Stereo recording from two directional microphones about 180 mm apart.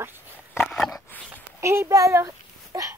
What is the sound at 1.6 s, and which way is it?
A child's voice, 15° right (ahead or behind).